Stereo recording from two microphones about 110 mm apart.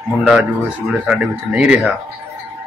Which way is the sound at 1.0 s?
10° right (ahead or behind).